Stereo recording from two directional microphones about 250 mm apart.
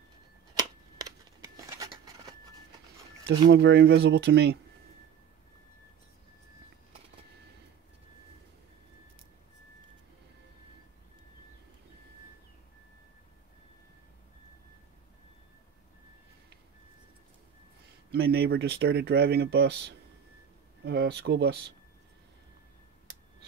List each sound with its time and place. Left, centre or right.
0.6 s a sound: centre
3.3 s speech: right
18.1 s speech: right
20.8 s speech: right